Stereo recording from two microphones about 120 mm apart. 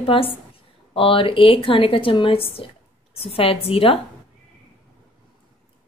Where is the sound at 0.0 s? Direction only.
50° left (ahead or behind).